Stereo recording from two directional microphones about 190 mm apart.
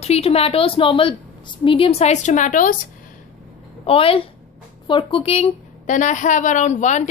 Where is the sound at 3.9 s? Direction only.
30° left (ahead or behind).